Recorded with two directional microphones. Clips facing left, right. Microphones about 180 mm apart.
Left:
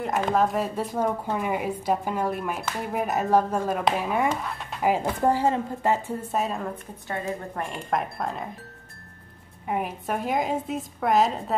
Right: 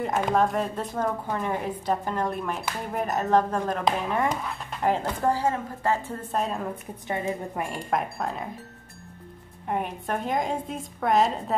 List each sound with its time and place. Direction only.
0.0 s a woman's voice: centre (ahead or behind)
5.2 s a woman's voice: 20° left (ahead or behind)
6.3 s a woman's voice: centre (ahead or behind)
7.1 s a woman's voice: 20° right (ahead or behind)
7.6 s a woman's voice: centre (ahead or behind)
9.7 s a woman's voice: 5° left (ahead or behind)